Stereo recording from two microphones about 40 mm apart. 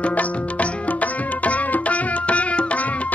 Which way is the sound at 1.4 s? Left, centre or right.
Left.